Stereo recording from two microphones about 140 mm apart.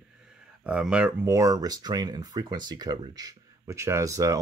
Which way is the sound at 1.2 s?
25° right (ahead or behind).